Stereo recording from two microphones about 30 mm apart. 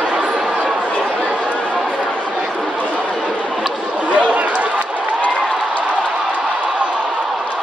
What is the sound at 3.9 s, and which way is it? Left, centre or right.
Chatter, right.